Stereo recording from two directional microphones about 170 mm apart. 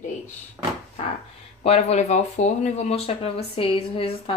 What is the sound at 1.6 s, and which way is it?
Speech, 40° left (ahead or behind).